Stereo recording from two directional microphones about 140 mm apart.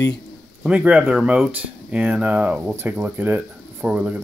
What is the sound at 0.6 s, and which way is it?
Speech, 10° right (ahead or behind).